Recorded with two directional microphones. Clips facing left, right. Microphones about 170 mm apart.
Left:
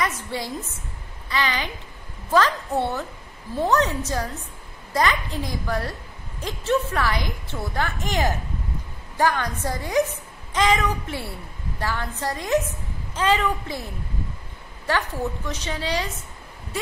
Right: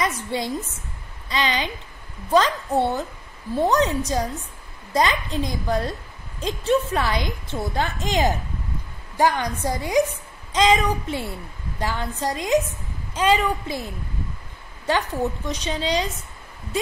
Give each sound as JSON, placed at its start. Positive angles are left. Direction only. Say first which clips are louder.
{"t": 0.0, "sound": "a woman's voice", "louder": "right 2 dB", "side_deg": -20}
{"t": 14.9, "sound": "a woman's voice", "louder": "right 2 dB", "side_deg": -20}